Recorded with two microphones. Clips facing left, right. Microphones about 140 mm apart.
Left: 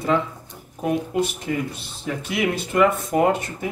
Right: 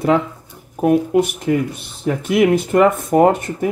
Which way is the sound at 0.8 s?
55° right (ahead or behind).